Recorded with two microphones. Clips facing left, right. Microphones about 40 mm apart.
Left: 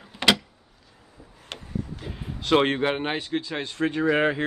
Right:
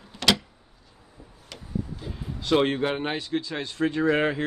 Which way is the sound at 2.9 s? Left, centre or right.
Left.